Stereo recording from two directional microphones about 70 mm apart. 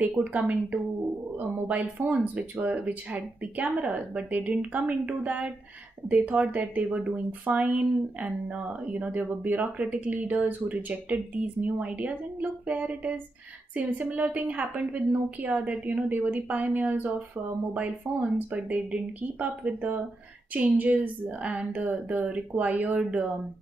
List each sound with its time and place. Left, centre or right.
0.2 s speech: right